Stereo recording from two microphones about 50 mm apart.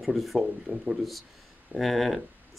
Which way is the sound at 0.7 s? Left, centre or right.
Right.